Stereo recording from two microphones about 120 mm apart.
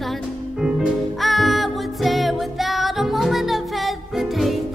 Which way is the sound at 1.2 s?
Centre (ahead or behind).